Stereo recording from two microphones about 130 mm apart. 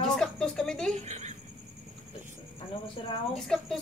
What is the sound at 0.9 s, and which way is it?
Speech, 60° right (ahead or behind).